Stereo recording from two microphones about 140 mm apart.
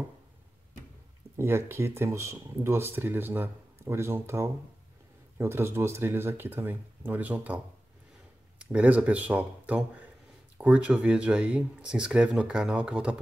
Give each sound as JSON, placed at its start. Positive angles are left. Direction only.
{"t": 1.3, "sound": "speech", "side_deg": -20}